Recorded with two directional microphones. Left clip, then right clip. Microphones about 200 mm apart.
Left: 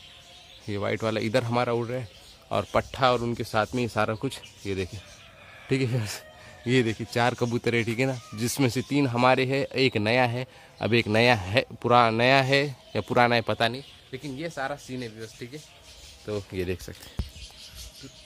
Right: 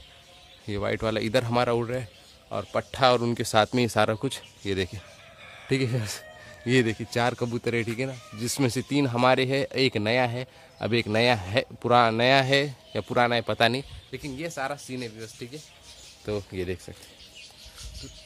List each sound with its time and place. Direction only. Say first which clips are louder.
0.7 s speech: even; centre (ahead or behind)
2.5 s speech: left 4 dB; 15° left (ahead or behind)
2.9 s speech: right 6 dB; 10° right (ahead or behind)
14.1 s speech: even; 5° right (ahead or behind)
16.5 s speech: left 1 dB; 5° left (ahead or behind)